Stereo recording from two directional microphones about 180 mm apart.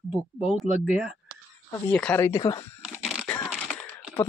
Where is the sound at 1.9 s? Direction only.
10° left (ahead or behind).